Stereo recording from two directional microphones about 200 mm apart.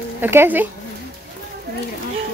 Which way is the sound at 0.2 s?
10° right (ahead or behind).